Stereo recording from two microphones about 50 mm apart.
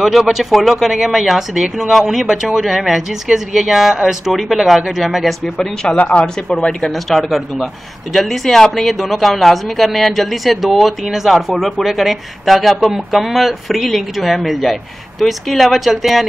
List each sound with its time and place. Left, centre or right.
0.0 s a man's voice: centre
5.9 s speech: left
6.9 s a man's voice: centre